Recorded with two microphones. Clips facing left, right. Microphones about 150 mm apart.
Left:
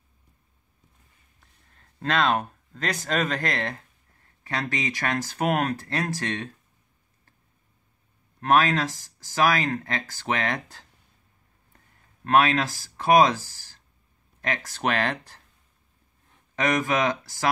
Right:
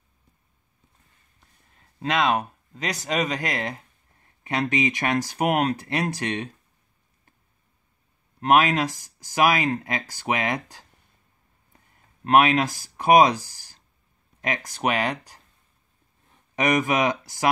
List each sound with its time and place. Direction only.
1.8 s speech: 10° right (ahead or behind)
8.4 s speech: 15° right (ahead or behind)
12.3 s speech: 20° right (ahead or behind)
16.5 s speech: 15° right (ahead or behind)